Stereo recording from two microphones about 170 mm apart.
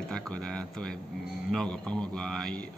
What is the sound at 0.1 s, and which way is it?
Speech, 5° left (ahead or behind).